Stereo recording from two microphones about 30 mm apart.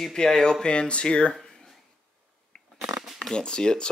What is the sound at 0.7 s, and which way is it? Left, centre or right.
Speech, left.